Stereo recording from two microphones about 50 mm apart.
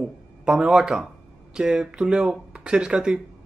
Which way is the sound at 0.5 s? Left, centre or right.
Centre.